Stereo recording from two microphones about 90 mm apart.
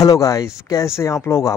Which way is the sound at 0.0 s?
40° left (ahead or behind).